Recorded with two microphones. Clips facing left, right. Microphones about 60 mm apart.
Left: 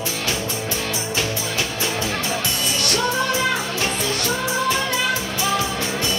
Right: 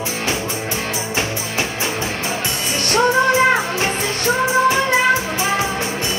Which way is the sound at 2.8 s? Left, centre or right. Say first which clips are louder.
Right 8 dB; right.